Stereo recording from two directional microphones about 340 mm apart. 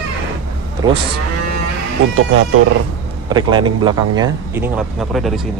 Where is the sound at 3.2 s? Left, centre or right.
Centre.